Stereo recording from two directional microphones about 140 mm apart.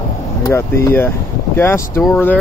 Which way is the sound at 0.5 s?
15° left (ahead or behind).